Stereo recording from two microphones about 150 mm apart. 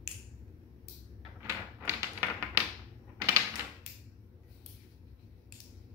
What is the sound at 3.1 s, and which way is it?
Door, 20° right (ahead or behind).